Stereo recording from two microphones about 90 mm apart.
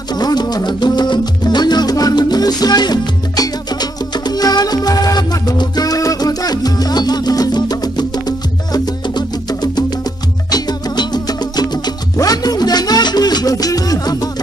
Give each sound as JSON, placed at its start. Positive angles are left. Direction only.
{"t": 0.1, "sound": "music", "side_deg": 50}